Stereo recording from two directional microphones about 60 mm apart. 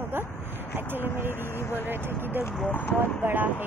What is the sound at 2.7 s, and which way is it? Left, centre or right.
Speech, left.